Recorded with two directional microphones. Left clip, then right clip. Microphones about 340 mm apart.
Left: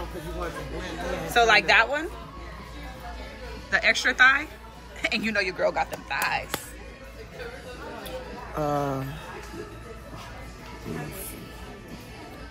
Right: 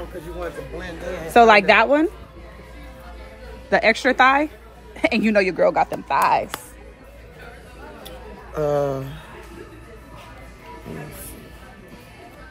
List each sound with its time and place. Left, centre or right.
1.3 s speech: centre
3.7 s speech: centre
8.5 s speech: right